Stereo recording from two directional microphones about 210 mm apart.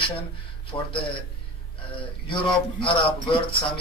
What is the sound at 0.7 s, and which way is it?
Speech, 15° left (ahead or behind).